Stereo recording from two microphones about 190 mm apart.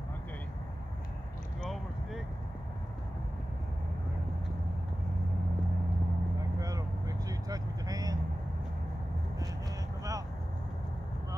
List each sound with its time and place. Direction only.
6.6 s vehicle: 20° right (ahead or behind)